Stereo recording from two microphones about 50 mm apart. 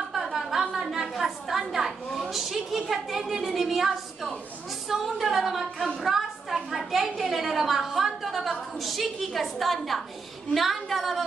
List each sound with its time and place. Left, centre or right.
0.1 s a woman's voice: centre